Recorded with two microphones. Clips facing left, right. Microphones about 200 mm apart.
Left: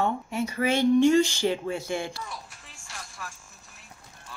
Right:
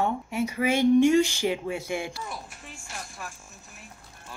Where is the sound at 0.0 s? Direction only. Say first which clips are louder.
Even; 10° right (ahead or behind).